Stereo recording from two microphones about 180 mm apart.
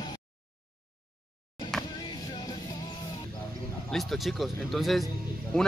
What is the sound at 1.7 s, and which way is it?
Vehicle, 5° left (ahead or behind).